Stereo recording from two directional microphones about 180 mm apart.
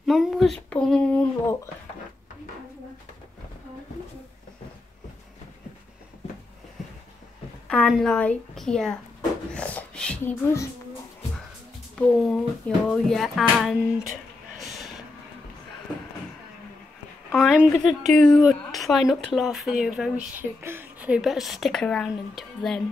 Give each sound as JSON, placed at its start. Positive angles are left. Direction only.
{"t": 0.0, "sound": "a woman's voice", "side_deg": 0}
{"t": 7.6, "sound": "a woman's voice", "side_deg": 5}
{"t": 9.5, "sound": "a sound", "side_deg": 5}
{"t": 11.9, "sound": "a woman's voice", "side_deg": 5}
{"t": 17.3, "sound": "a woman's voice", "side_deg": -5}